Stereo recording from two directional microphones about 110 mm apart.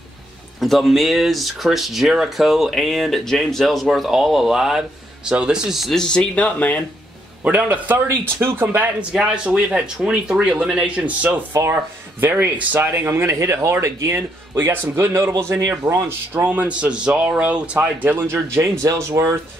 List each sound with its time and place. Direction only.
0.6 s speech: centre (ahead or behind)
7.4 s speech: 15° right (ahead or behind)